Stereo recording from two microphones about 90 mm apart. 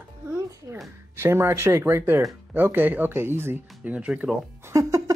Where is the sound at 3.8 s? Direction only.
15° right (ahead or behind).